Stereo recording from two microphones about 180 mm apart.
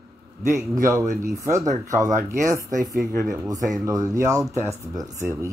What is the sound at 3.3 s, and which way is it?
Speech, 20° right (ahead or behind).